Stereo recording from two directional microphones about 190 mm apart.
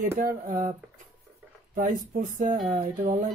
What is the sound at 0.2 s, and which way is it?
Speech, 45° right (ahead or behind).